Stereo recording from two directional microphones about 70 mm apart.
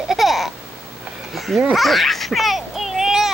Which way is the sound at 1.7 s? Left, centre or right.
Centre.